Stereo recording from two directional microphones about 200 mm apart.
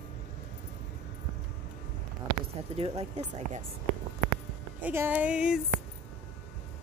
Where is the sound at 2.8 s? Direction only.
30° right (ahead or behind).